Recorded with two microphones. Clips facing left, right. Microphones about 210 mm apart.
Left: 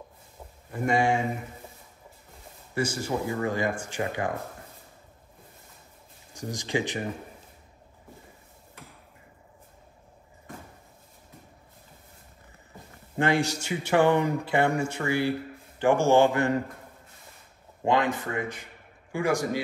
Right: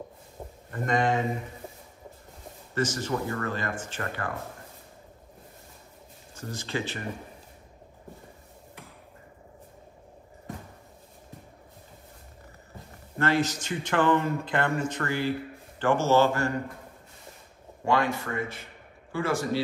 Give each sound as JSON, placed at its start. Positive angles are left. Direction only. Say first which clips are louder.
{"t": 0.7, "sound": "speech", "louder": "left 2 dB", "side_deg": 10}
{"t": 2.7, "sound": "speech", "louder": "even", "side_deg": 10}
{"t": 6.3, "sound": "speech", "louder": "left 4 dB", "side_deg": 15}
{"t": 13.2, "sound": "speech", "louder": "left 1 dB", "side_deg": 15}
{"t": 17.8, "sound": "speech", "louder": "left 1 dB", "side_deg": 20}